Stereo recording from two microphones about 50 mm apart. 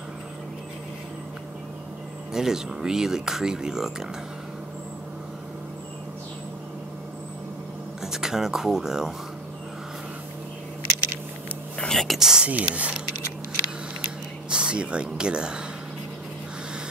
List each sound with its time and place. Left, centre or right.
2.3 s speech: centre
8.0 s speech: centre
11.9 s whispering: centre
12.2 s speech: centre
12.4 s speech: right
14.5 s speech: right